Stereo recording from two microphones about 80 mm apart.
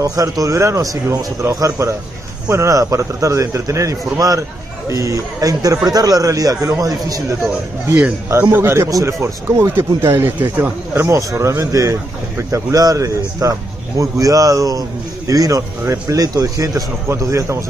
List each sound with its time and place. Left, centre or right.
0.0 s a man's voice: right
8.3 s speech: right
15.8 s speech: right
16.2 s a man's voice: right